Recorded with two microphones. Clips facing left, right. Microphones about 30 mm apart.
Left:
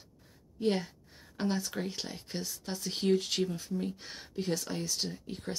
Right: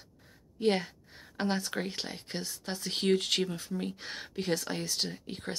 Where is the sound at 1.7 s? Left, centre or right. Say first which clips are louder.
Right 2 dB; right.